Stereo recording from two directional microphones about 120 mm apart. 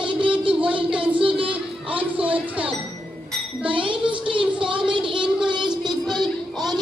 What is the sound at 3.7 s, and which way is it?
A woman's voice, 45° right (ahead or behind).